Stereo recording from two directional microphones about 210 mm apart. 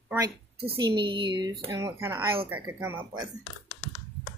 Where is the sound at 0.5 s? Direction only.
50° right (ahead or behind).